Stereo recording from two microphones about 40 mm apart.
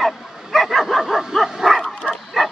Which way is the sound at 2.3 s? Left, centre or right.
Centre.